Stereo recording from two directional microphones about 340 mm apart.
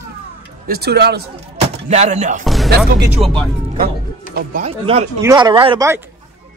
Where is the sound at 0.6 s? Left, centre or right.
Right.